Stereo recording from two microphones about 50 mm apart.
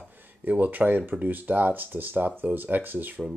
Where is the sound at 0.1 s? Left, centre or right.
Right.